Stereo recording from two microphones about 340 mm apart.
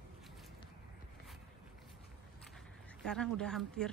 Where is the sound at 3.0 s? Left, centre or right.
Centre.